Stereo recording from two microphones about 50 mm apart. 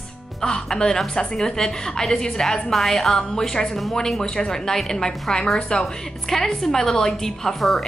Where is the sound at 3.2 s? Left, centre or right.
Centre.